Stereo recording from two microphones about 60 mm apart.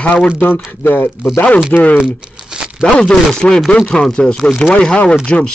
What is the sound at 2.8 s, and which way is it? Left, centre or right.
Speech, centre.